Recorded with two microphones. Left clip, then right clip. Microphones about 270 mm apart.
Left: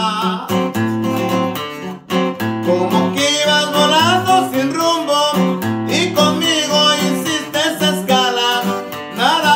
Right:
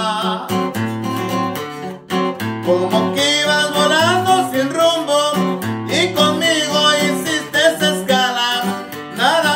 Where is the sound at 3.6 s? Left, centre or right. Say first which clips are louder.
Left 1 dB; left.